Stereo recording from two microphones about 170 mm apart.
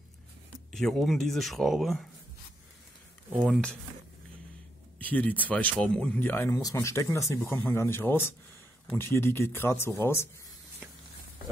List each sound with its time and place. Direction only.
0.7 s speech: centre (ahead or behind)
3.3 s speech: 5° right (ahead or behind)
4.9 s speech: 10° left (ahead or behind)